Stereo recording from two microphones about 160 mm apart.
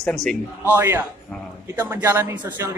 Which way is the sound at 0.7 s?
15° right (ahead or behind).